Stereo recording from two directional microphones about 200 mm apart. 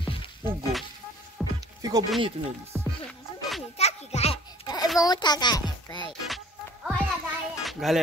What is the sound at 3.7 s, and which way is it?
Music, 30° left (ahead or behind).